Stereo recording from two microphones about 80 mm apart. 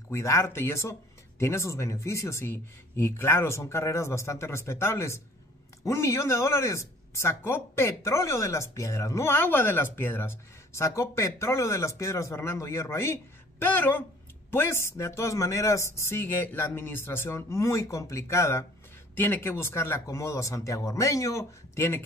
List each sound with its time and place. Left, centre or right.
0.1 s speech: left
13.7 s speech: left
14.5 s speech: left